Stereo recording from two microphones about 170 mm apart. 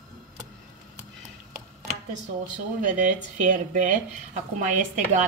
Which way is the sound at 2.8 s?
50° right (ahead or behind).